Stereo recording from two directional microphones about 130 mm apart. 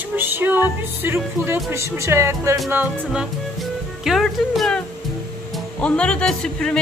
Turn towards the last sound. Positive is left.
turn(degrees=5)  # may be behind; listen again after turning